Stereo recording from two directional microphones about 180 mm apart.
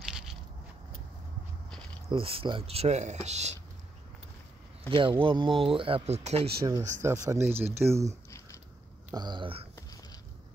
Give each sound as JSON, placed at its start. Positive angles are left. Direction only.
{"t": 0.0, "sound": "a sound", "side_deg": -5}
{"t": 2.0, "sound": "speech", "side_deg": -30}
{"t": 4.8, "sound": "speech", "side_deg": -30}
{"t": 6.9, "sound": "speech", "side_deg": -15}
{"t": 9.1, "sound": "speech", "side_deg": -25}